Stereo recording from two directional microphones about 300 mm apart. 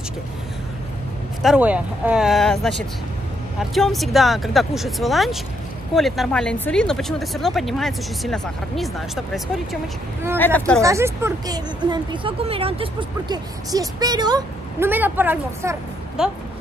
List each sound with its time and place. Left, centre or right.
1.4 s speech: centre
10.8 s speech: centre